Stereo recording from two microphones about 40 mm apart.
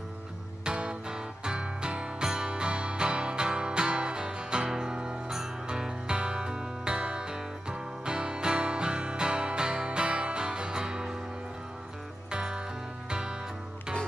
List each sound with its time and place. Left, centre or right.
0.7 s music: right
12.3 s music: right